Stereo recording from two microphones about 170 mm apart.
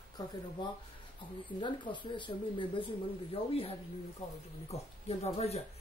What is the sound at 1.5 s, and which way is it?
Speech, 30° left (ahead or behind).